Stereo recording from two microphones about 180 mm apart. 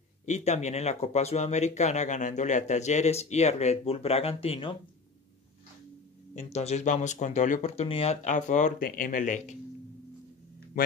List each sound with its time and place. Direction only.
0.2 s speech: 40° left (ahead or behind)
6.3 s speech: 35° left (ahead or behind)